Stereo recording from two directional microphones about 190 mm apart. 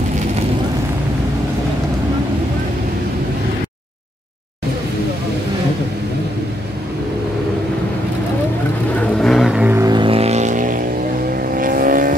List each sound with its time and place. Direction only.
8.9 s vehicle: centre (ahead or behind)
9.8 s vehicle: 25° right (ahead or behind); by 12.2 s 45° right (ahead or behind)